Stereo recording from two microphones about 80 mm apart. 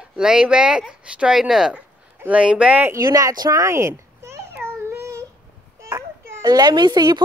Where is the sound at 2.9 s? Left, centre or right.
Right.